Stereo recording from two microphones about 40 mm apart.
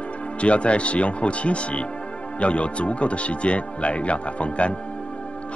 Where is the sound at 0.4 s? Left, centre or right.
Left.